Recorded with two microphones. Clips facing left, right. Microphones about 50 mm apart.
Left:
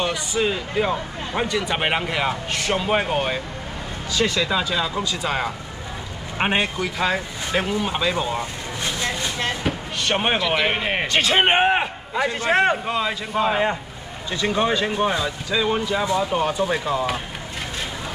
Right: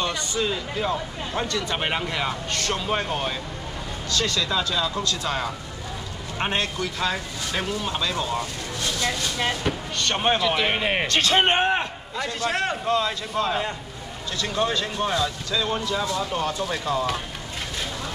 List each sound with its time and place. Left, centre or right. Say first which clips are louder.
0.0 s a man's voice: left 3 dB; centre
9.6 s a man's voice: left 1 dB; centre